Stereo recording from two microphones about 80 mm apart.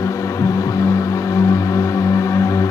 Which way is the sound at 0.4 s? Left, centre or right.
Left.